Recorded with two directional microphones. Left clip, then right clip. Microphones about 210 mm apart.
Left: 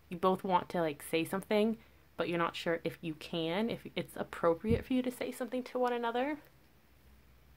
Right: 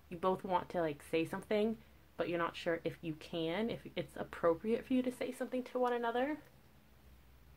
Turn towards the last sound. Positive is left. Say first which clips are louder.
# left 2 dB
turn(degrees=35)  # may be behind; listen again after turning